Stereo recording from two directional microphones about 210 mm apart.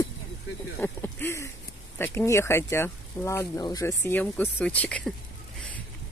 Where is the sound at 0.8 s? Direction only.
10° left (ahead or behind).